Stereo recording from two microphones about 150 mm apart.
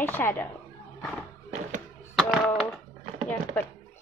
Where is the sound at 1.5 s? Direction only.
55° right (ahead or behind).